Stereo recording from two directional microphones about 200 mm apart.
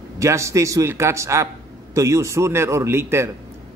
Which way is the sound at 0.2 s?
15° right (ahead or behind).